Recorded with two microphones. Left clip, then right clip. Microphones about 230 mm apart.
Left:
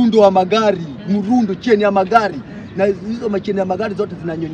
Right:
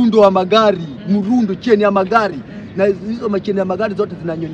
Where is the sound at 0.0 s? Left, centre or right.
Centre.